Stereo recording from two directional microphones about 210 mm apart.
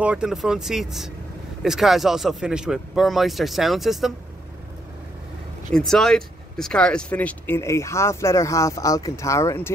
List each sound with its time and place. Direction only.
0.0 s speech: 5° right (ahead or behind)
5.7 s speech: centre (ahead or behind)